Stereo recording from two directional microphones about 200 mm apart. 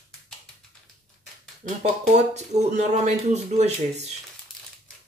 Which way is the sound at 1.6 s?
35° right (ahead or behind).